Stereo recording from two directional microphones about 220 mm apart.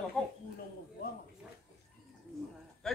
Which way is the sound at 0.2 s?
5° left (ahead or behind).